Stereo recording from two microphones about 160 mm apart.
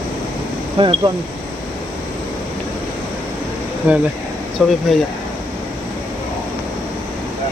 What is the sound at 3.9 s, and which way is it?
Speech, 10° right (ahead or behind).